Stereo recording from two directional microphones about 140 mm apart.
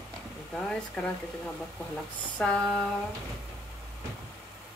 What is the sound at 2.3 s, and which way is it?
Female singing, 5° left (ahead or behind).